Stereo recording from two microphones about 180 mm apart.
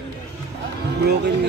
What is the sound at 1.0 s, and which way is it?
Speech, 70° right (ahead or behind).